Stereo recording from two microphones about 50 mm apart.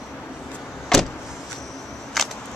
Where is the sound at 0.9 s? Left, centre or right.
Centre.